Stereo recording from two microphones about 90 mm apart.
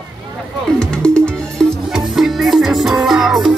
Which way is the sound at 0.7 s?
10° left (ahead or behind).